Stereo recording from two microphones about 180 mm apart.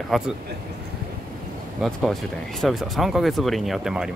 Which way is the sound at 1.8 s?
Centre (ahead or behind).